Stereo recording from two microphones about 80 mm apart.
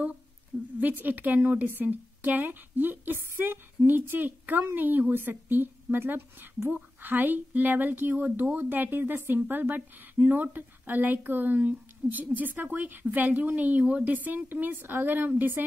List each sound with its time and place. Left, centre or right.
0.7 s speech: right